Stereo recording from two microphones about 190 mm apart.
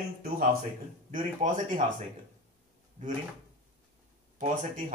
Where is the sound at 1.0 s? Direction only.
45° right (ahead or behind).